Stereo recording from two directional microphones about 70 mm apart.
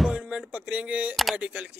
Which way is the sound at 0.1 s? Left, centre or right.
Centre.